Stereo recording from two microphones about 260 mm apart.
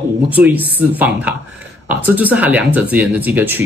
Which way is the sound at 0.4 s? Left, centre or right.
Centre.